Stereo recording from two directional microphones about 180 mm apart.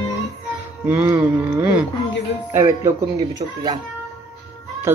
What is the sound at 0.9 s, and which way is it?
Speech, 15° right (ahead or behind).